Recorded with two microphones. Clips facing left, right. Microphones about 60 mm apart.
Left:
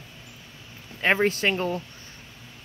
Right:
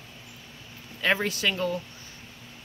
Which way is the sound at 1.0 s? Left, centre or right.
Left.